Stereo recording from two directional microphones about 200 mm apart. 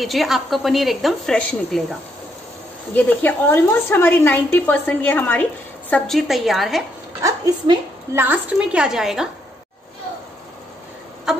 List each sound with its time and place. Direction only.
0.0 s a woman's voice: centre (ahead or behind)
7.2 s a woman's voice: 15° right (ahead or behind)
8.2 s a woman's voice: 10° right (ahead or behind)